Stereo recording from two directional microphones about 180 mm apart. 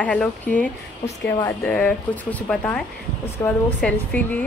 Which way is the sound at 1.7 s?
5° left (ahead or behind).